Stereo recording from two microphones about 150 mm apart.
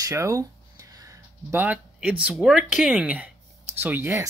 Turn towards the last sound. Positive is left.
turn(degrees=-15)  # may be behind; listen again after turning